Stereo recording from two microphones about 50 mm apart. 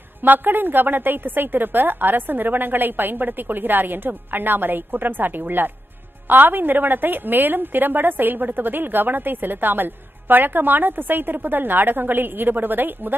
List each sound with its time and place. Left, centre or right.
0.2 s a woman's voice: right